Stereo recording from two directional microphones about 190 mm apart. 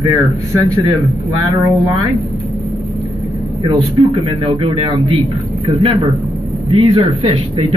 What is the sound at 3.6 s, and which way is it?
A man's voice, 25° right (ahead or behind).